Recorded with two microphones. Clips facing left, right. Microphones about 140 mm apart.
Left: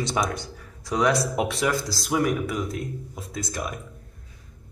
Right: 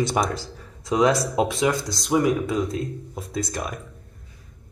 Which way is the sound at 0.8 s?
25° right (ahead or behind).